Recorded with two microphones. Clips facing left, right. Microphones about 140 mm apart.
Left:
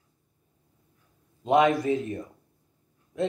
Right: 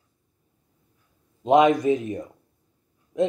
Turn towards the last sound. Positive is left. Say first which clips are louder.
# right 5 dB
turn(degrees=-20)  # may be behind; listen again after turning